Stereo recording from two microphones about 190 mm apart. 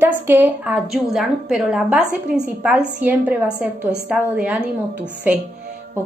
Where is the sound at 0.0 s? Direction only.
10° right (ahead or behind).